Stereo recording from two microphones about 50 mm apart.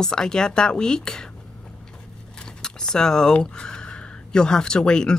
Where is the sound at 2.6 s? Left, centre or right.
Centre.